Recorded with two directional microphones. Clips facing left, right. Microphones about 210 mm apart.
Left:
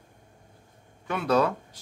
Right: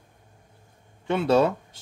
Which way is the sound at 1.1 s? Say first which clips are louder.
Right 4 dB; 25° right (ahead or behind).